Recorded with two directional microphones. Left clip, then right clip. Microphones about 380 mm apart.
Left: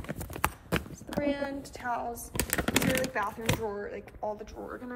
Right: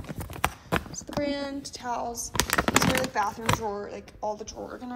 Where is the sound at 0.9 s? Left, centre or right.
Centre.